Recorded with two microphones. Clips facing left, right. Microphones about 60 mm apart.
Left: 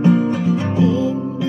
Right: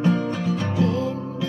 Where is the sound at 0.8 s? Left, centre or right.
Right.